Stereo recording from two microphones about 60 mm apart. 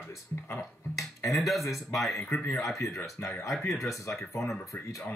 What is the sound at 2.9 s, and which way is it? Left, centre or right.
Speech, left.